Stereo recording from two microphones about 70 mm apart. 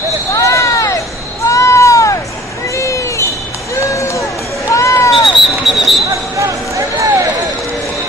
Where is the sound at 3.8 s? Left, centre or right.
Left.